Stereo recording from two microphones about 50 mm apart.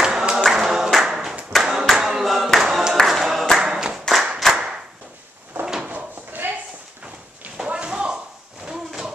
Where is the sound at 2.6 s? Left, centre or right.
Centre.